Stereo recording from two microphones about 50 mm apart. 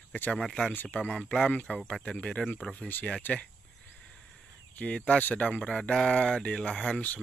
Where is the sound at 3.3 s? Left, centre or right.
Left.